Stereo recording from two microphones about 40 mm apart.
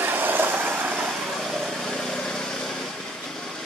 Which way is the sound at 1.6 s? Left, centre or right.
Centre.